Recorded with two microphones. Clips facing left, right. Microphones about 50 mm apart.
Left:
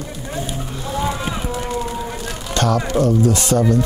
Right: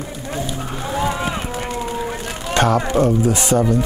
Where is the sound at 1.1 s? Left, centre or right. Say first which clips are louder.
Right 1 dB; right.